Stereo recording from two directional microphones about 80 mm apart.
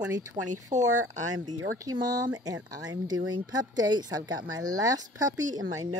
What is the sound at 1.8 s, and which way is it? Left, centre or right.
Speech, right.